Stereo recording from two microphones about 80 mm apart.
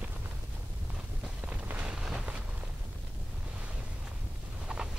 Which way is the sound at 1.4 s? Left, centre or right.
Right.